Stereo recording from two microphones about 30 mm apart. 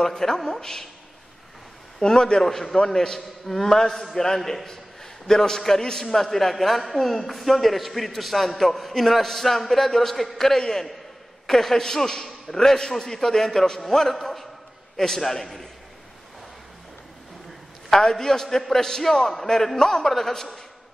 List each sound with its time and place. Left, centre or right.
0.0 s a man's voice: centre
2.0 s a man's voice: left
2.4 s a man's voice: centre
2.7 s a man's voice: centre
5.3 s a man's voice: centre
10.6 s a man's voice: centre
17.8 s a man's voice: centre
20.1 s a man's voice: centre